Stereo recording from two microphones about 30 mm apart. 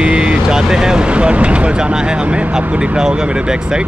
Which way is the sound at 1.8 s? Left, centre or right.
Right.